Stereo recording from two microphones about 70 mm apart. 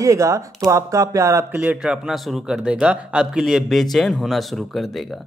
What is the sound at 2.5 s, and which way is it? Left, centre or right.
Speech, centre.